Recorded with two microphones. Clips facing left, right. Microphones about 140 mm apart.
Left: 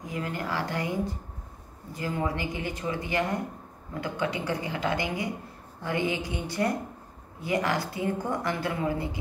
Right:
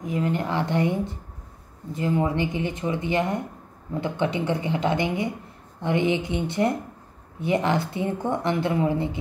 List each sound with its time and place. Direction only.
0.0 s a woman's voice: 25° right (ahead or behind)